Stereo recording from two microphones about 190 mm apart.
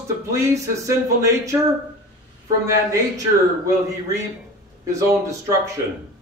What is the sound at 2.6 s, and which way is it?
Speech, 15° right (ahead or behind).